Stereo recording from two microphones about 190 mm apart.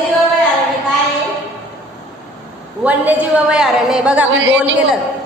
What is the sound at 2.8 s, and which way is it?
A woman's voice, 10° right (ahead or behind).